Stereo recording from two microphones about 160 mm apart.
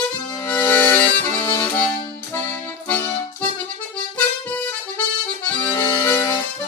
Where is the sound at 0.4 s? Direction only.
15° left (ahead or behind).